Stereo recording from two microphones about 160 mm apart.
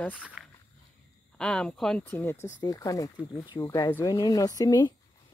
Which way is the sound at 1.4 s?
5° left (ahead or behind).